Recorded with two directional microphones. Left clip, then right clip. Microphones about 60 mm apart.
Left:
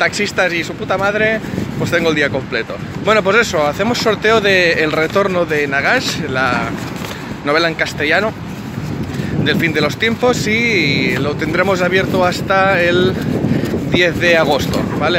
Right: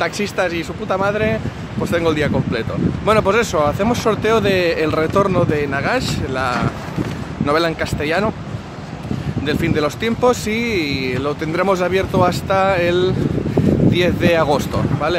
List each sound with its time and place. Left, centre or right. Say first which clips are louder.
0.0 s speech: left 4 dB; right
5.7 s speech: left 5 dB; centre
5.9 s speech: left 4 dB; right
7.8 s speech: left 4 dB; right
9.4 s speech: left 4 dB; centre